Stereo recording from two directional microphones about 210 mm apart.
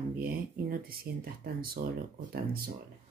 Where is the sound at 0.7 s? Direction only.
45° right (ahead or behind).